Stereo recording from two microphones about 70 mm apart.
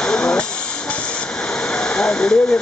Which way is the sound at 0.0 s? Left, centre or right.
Centre.